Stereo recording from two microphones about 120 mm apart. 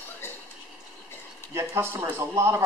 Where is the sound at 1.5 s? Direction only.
20° right (ahead or behind).